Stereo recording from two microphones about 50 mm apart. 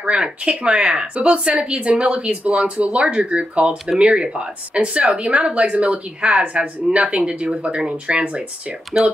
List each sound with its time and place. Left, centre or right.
0.0 s speech: right